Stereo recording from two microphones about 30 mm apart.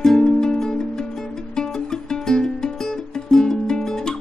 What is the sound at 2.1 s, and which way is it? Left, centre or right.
Music, left.